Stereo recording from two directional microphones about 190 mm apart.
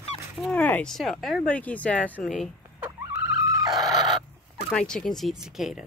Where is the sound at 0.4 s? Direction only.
5° left (ahead or behind).